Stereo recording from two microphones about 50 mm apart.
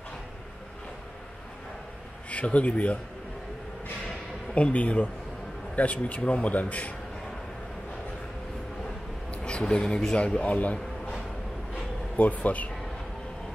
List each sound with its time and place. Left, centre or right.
2.3 s speech: left
4.6 s speech: left
9.3 s a man's voice: left
11.7 s a sound: left